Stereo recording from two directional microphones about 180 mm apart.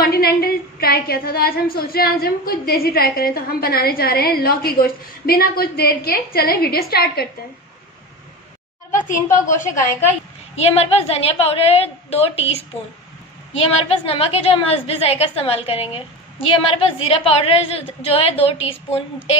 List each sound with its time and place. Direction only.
0.0 s a woman's voice: 55° left (ahead or behind)
9.0 s a woman's voice: 45° left (ahead or behind)
10.5 s a woman's voice: 35° left (ahead or behind)